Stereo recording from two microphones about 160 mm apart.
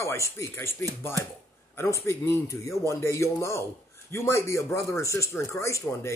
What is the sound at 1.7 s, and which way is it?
Speech, 15° left (ahead or behind).